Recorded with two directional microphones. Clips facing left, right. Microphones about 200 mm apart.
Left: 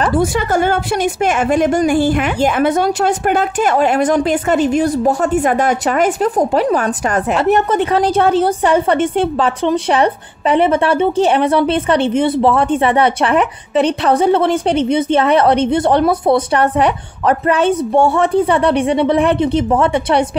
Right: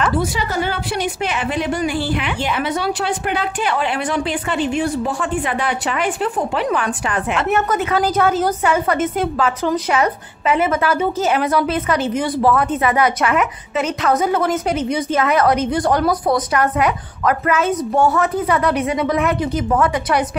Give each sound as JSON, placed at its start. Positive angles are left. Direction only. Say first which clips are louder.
{"t": 0.0, "sound": "a woman's voice", "louder": "left 5 dB", "side_deg": 50}